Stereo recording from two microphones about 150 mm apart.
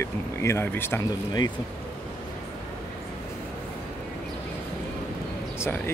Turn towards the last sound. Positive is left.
turn(degrees=15)  # may be behind; listen again after turning